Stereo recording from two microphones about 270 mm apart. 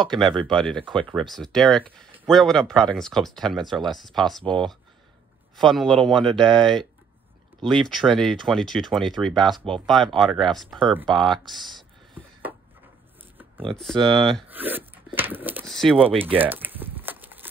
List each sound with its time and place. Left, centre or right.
0.0 s speech: centre
5.6 s speech: centre
13.7 s speech: centre
15.1 s a sound: centre
16.1 s speech: right
16.3 s walk: centre